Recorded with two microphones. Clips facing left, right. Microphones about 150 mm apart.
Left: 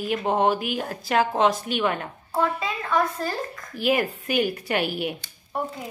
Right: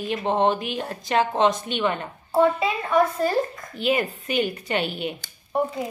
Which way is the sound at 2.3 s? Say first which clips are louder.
Right 6 dB; 25° right (ahead or behind).